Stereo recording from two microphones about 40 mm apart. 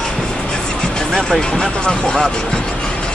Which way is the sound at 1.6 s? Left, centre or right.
Centre.